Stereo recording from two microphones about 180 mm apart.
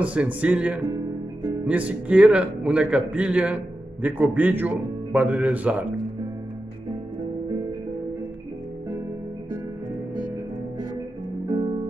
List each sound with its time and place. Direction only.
0.0 s a man's voice: 5° right (ahead or behind)
0.8 s music: 20° right (ahead or behind)
1.7 s a man's voice: 10° right (ahead or behind)